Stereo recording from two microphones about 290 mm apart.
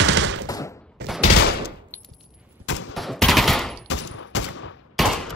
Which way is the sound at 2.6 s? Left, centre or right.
Left.